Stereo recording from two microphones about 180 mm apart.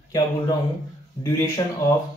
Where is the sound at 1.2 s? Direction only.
15° left (ahead or behind).